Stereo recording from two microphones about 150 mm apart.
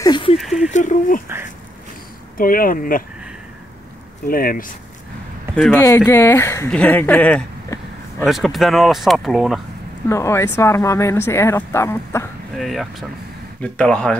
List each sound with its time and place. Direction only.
0.0 s a sound: 30° left (ahead or behind)
0.4 s speech: centre (ahead or behind)
0.7 s speech: 55° left (ahead or behind)
2.3 s speech: 70° left (ahead or behind)
4.3 s speech: 70° left (ahead or behind)
5.5 s speech: 5° left (ahead or behind)
5.8 s speech: 20° left (ahead or behind); by 9.6 s centre (ahead or behind)
10.0 s speech: 20° left (ahead or behind)
12.5 s speech: centre (ahead or behind)